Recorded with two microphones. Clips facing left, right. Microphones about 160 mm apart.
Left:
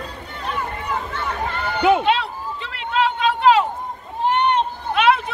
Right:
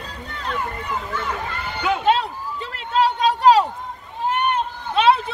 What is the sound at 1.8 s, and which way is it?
Speech, 25° left (ahead or behind).